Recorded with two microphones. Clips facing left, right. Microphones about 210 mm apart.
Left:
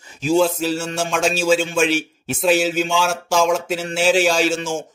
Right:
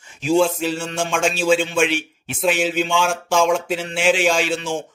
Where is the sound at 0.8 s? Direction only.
5° left (ahead or behind).